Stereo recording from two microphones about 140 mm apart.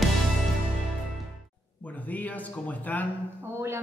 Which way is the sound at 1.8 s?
10° left (ahead or behind).